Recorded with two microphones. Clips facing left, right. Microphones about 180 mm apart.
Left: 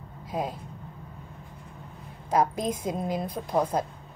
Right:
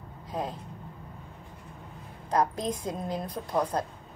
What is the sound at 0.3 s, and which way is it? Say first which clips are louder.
Speech: left 2 dB; 10° left (ahead or behind).